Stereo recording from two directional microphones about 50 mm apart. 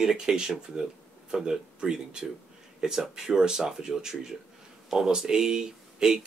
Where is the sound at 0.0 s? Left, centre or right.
Centre.